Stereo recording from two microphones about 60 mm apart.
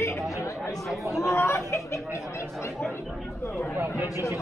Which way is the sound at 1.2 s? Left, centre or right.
Left.